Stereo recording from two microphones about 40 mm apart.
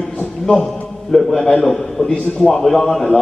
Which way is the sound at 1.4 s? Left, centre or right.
Centre.